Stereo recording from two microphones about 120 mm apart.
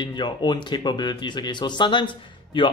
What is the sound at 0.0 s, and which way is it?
Speech, 40° left (ahead or behind).